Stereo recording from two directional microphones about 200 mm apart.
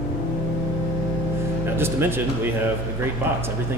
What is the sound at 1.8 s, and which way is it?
Speech, 10° right (ahead or behind).